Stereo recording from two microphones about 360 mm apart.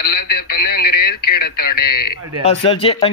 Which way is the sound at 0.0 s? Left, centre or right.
Left.